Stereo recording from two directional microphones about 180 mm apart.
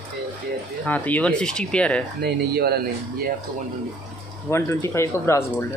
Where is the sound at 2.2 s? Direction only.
60° right (ahead or behind).